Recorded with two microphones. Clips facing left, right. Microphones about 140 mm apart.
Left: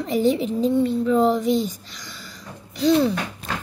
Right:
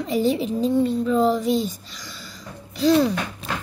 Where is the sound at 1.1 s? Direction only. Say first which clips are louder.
Left 1 dB; 20° left (ahead or behind).